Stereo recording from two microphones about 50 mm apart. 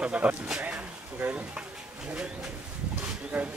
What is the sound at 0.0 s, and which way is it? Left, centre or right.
Speech, right.